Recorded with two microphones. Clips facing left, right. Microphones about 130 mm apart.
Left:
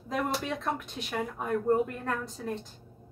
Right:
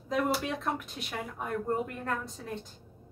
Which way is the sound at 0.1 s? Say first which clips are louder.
Right 1 dB; centre (ahead or behind).